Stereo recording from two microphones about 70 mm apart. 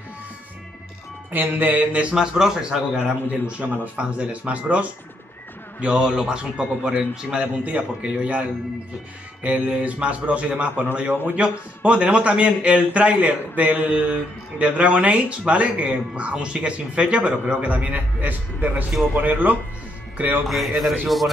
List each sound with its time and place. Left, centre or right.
1.3 s a man's voice: right; by 2.8 s centre
3.1 s a man's voice: centre
20.4 s speech: centre